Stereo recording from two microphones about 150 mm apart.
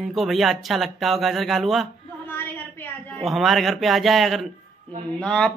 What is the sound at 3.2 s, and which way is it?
Speech, centre (ahead or behind).